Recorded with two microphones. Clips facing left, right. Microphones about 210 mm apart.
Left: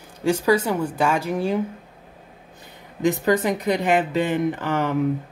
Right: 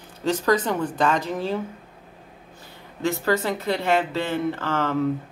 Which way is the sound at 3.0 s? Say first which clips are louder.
Left 3 dB; 15° left (ahead or behind).